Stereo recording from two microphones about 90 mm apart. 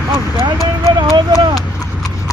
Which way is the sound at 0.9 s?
55° right (ahead or behind).